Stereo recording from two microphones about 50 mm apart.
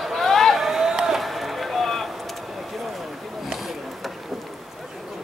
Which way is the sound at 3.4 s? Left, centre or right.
Centre.